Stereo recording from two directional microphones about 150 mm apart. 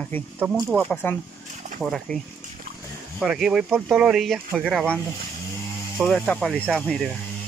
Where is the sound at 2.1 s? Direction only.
70° right (ahead or behind).